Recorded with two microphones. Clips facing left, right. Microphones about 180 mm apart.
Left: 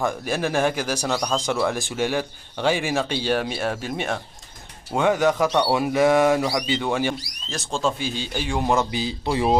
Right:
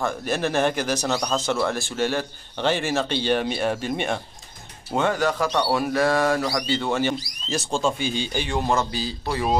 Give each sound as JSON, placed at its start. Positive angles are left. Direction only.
{"t": 0.0, "sound": "speech", "side_deg": 10}
{"t": 4.9, "sound": "speech", "side_deg": 15}
{"t": 7.4, "sound": "speech", "side_deg": 0}